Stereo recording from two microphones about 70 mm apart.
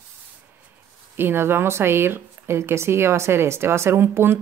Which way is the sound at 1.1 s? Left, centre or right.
Right.